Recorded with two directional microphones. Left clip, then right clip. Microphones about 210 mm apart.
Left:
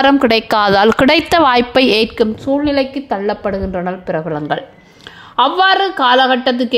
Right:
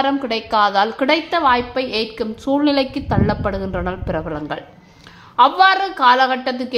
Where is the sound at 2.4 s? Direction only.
10° left (ahead or behind).